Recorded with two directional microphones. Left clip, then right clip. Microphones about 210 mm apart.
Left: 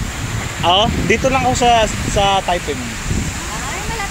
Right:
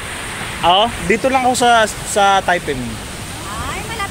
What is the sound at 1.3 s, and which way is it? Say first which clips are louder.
Speech: right 2 dB; 15° right (ahead or behind).